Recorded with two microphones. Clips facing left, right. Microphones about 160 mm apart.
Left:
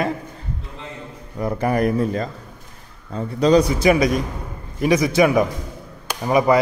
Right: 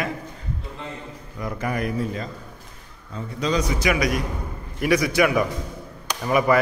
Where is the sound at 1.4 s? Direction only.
35° left (ahead or behind).